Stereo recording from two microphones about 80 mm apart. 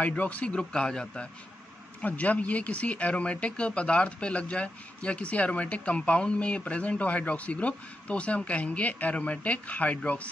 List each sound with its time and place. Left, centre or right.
0.0 s speech: centre